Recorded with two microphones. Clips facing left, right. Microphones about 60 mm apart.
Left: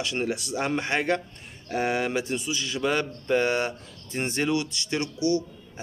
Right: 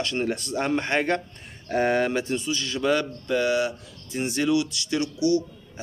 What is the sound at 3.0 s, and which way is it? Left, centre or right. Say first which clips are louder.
Speech: left 1 dB; left.